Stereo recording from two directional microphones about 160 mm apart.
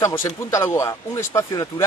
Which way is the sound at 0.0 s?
20° left (ahead or behind).